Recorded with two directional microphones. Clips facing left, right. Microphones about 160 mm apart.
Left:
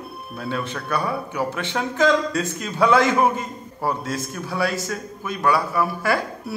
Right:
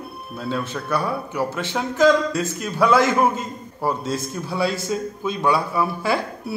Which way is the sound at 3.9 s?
15° right (ahead or behind).